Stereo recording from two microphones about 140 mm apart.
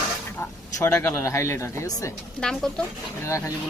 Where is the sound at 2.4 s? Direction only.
5° left (ahead or behind).